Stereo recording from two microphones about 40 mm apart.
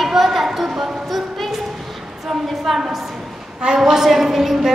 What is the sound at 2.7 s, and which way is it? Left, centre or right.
Speech, centre.